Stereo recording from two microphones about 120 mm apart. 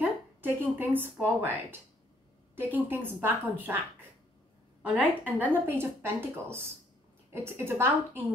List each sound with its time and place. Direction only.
0.0 s a sound: 15° right (ahead or behind)
1.2 s a woman's voice: 15° right (ahead or behind)
4.8 s a woman's voice: 15° right (ahead or behind)